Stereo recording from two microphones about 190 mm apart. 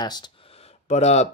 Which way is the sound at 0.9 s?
35° left (ahead or behind).